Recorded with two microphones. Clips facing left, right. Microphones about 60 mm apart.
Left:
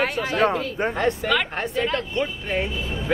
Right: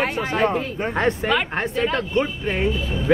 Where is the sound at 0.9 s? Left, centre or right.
Right.